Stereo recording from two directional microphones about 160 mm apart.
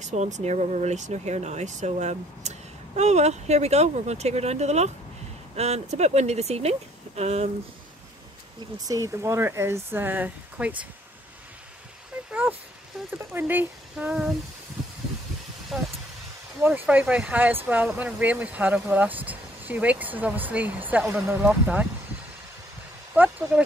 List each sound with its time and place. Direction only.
0.0 s speech: 45° right (ahead or behind)
8.7 s speech: 20° right (ahead or behind)
12.3 s a sound: 10° right (ahead or behind)
13.3 s speech: 10° right (ahead or behind)
15.7 s speech: centre (ahead or behind)
23.1 s speech: 10° right (ahead or behind)